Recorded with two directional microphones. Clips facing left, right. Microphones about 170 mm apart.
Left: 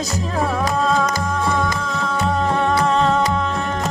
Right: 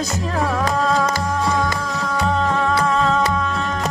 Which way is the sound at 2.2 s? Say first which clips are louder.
Even; 15° left (ahead or behind).